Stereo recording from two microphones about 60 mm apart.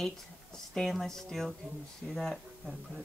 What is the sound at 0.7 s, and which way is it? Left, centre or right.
Speech, centre.